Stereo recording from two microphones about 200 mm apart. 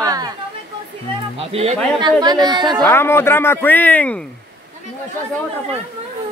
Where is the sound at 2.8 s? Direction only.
10° left (ahead or behind).